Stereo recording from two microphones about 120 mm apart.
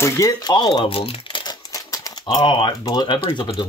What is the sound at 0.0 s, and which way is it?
Speech, 30° left (ahead or behind).